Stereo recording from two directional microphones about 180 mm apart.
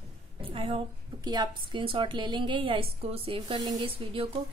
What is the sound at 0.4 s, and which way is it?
A woman's voice, 30° right (ahead or behind).